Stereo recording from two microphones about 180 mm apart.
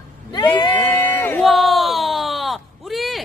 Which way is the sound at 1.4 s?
Centre (ahead or behind).